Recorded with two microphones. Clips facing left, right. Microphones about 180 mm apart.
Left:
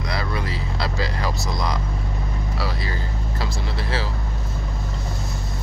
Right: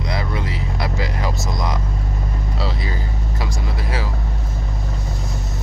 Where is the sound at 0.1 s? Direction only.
20° right (ahead or behind).